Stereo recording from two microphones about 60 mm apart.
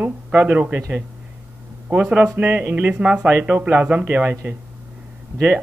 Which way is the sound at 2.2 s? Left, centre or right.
Right.